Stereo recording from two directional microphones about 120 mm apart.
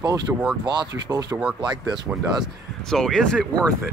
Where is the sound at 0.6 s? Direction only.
35° right (ahead or behind).